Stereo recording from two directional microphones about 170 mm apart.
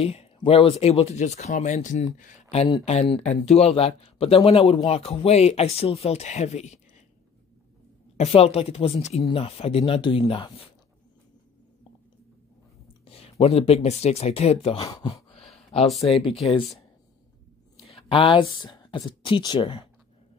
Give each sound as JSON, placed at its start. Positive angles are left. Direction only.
{"t": 0.0, "sound": "speech", "side_deg": 35}
{"t": 8.2, "sound": "speech", "side_deg": 35}
{"t": 13.0, "sound": "speech", "side_deg": 35}
{"t": 17.7, "sound": "speech", "side_deg": 35}